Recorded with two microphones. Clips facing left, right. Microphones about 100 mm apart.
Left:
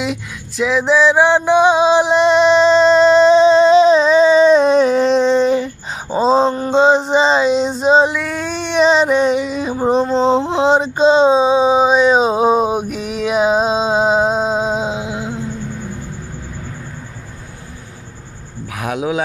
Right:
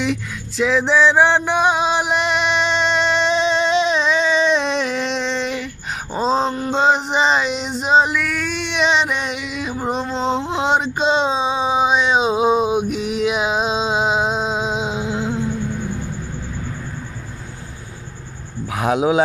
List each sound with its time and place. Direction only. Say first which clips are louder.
0.6 s male singing: left 2 dB; 5° left (ahead or behind)
1.7 s music: left 6 dB; 25° left (ahead or behind)
6.0 s a sound: left 6 dB; 5° left (ahead or behind)
7.2 s female singing: left 5 dB; 30° left (ahead or behind)
10.4 s a sound: left 5 dB; 35° left (ahead or behind)
12.9 s music: left 2 dB; 40° left (ahead or behind)
18.7 s a man's voice: right 3 dB; 25° right (ahead or behind)